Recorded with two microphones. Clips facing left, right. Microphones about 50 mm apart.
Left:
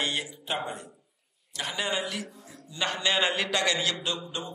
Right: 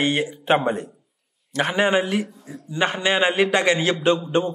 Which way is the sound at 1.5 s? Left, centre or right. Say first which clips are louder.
Right 11 dB; right.